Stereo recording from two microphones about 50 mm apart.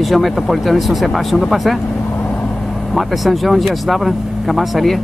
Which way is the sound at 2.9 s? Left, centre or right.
Centre.